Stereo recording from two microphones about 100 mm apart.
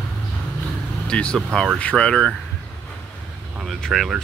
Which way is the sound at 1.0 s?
10° left (ahead or behind).